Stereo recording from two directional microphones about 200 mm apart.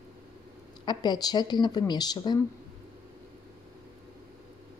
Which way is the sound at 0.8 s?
20° left (ahead or behind).